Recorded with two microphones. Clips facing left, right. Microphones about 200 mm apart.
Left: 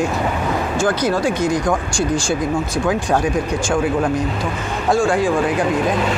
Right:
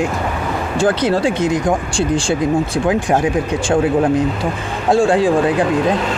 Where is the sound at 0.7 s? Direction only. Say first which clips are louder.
Right 4 dB; 30° right (ahead or behind).